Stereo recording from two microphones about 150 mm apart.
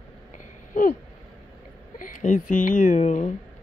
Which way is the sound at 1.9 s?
60° left (ahead or behind).